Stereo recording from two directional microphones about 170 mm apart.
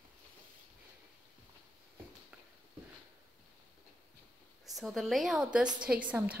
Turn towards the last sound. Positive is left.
turn(degrees=-10)  # may be behind; listen again after turning